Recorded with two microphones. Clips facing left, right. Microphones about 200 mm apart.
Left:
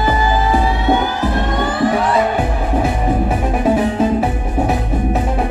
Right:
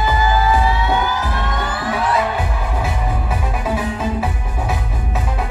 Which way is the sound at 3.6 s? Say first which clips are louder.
Left 9 dB; 35° left (ahead or behind).